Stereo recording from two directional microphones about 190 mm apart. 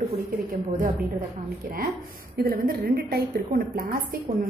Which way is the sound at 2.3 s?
55° right (ahead or behind).